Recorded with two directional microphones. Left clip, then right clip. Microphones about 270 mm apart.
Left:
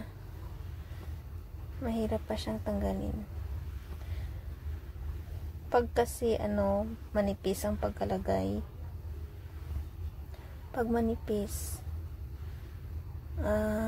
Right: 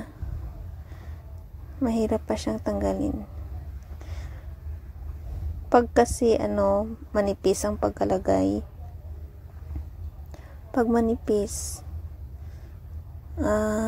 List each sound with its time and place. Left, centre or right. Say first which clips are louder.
1.8 s a woman's voice: right 9 dB; right
5.7 s a woman's voice: right 9 dB; right
10.7 s a woman's voice: right 8 dB; right
13.4 s a woman's voice: right 7 dB; right